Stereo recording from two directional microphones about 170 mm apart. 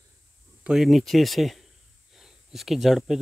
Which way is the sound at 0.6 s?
5° right (ahead or behind).